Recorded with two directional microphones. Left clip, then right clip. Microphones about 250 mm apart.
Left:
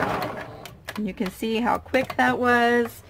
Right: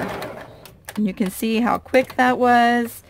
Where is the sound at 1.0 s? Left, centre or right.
Right.